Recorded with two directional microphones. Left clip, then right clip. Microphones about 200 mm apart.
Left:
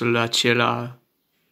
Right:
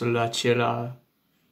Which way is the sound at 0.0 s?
25° left (ahead or behind).